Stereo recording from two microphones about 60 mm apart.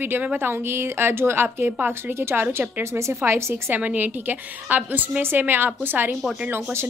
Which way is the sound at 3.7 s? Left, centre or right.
Right.